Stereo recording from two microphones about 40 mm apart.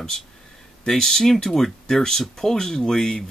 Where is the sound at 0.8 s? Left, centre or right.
Centre.